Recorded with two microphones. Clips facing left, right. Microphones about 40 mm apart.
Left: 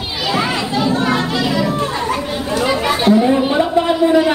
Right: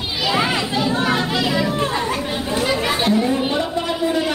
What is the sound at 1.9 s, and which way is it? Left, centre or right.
Chatter, centre.